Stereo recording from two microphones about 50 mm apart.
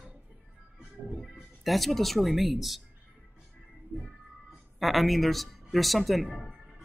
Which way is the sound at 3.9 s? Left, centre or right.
Right.